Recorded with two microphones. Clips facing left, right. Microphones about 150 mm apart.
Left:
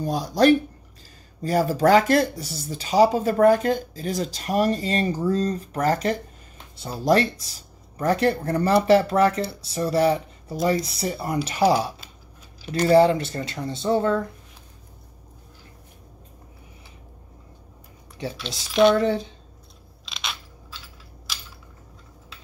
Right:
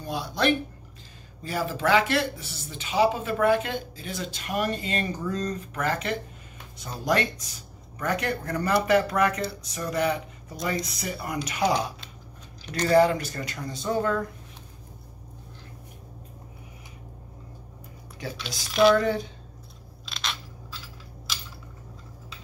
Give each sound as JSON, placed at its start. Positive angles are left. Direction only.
{"t": 0.0, "sound": "speech", "side_deg": 40}
{"t": 11.6, "sound": "speech", "side_deg": 5}
{"t": 12.8, "sound": "speech", "side_deg": 25}
{"t": 18.7, "sound": "speech", "side_deg": 0}
{"t": 18.9, "sound": "speech", "side_deg": 25}
{"t": 20.1, "sound": "coin", "side_deg": 0}